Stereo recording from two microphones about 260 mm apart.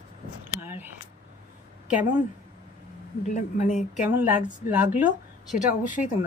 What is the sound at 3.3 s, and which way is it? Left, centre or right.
Speech, left.